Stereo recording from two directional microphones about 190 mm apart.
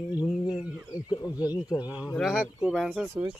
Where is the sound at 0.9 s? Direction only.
20° left (ahead or behind).